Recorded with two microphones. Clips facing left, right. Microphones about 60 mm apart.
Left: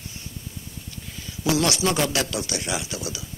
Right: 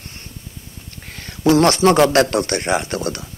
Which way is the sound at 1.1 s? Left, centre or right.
Right.